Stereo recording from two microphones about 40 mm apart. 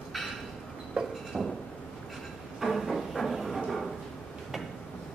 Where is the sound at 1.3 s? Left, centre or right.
Centre.